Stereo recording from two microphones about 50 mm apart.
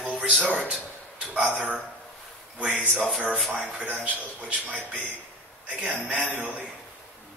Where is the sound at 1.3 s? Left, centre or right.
Right.